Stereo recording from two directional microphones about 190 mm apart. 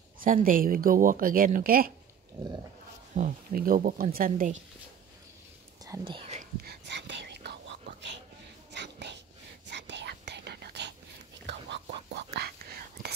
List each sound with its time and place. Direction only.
0.2 s speech: 45° right (ahead or behind)
3.2 s speech: 45° right (ahead or behind)
6.0 s speech: 25° right (ahead or behind)
6.4 s whispering: 55° right (ahead or behind)
8.7 s dog: 65° right (ahead or behind)
9.7 s whispering: 65° right (ahead or behind)